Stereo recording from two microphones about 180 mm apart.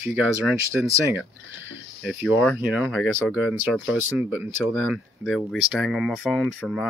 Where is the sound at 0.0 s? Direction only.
5° right (ahead or behind).